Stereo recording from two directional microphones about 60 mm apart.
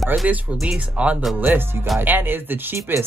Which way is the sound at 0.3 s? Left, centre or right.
Right.